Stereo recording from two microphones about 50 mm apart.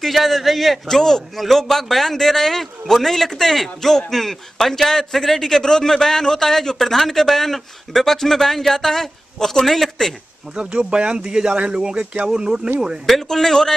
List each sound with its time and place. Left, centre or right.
0.0 s a man's voice: centre
10.5 s speech: centre
13.0 s a man's voice: centre